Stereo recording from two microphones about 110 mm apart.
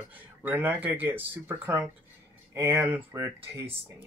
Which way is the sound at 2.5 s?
25° right (ahead or behind).